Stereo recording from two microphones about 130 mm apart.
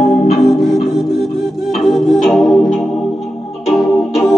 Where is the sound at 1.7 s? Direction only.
Centre (ahead or behind).